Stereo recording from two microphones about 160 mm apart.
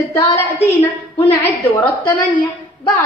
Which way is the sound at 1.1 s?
35° left (ahead or behind).